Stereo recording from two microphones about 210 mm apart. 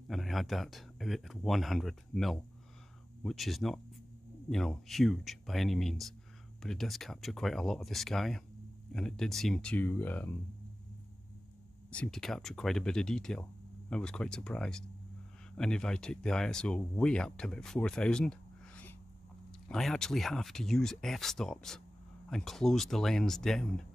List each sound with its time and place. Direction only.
0.1 s speech: centre (ahead or behind)
11.9 s speech: 5° left (ahead or behind)